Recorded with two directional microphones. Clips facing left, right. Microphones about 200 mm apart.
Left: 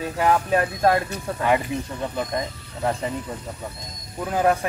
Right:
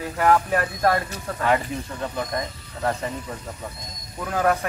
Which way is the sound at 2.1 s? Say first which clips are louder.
Left 2 dB; 20° left (ahead or behind).